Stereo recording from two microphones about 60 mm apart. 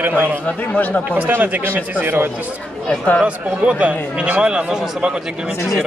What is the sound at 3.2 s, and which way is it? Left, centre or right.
A man's voice, right.